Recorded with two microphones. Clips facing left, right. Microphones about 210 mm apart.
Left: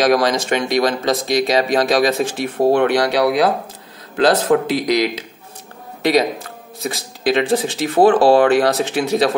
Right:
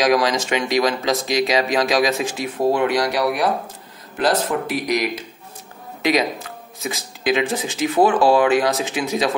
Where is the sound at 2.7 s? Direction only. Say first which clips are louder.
Left 4 dB; 70° left (ahead or behind); by 5.2 s 90° left.